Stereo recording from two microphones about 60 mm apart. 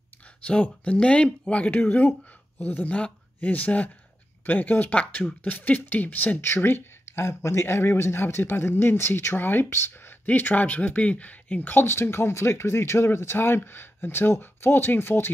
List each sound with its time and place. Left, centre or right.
0.4 s speech: left